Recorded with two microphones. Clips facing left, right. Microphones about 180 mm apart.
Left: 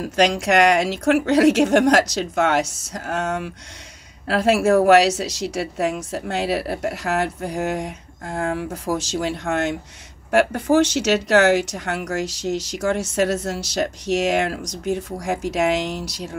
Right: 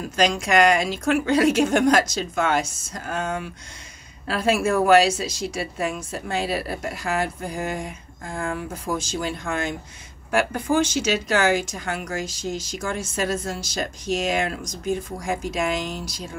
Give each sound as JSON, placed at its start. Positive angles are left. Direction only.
{"t": 0.0, "sound": "speech", "side_deg": 70}